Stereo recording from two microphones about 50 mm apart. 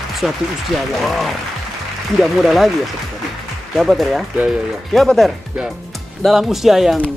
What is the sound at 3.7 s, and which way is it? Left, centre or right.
Speech, centre.